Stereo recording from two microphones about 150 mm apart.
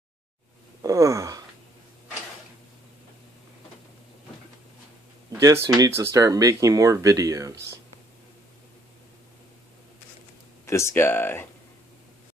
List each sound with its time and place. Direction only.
0.8 s a sound: 20° right (ahead or behind)
5.4 s speech: 20° right (ahead or behind)
10.6 s speech: 20° left (ahead or behind)